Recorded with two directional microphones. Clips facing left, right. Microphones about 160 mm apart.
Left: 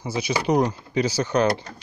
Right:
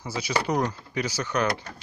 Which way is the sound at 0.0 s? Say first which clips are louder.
Left 3 dB; 20° left (ahead or behind).